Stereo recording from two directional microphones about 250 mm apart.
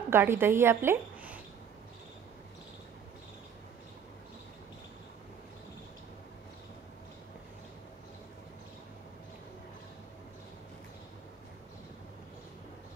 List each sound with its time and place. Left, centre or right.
0.1 s a woman's voice: centre